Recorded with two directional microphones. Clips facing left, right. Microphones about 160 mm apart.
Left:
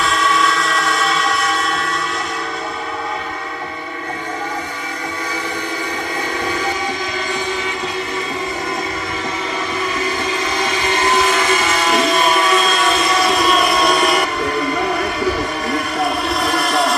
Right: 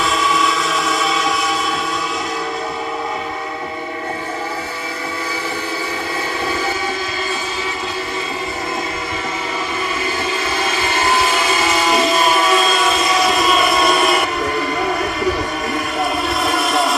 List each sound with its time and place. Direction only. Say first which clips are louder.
0.0 s train: even; centre (ahead or behind)
11.9 s vehicle: left 1 dB; centre (ahead or behind)
15.7 s vehicle: left 1 dB; centre (ahead or behind)